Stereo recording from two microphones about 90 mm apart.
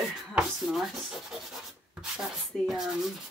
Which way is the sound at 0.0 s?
Centre (ahead or behind).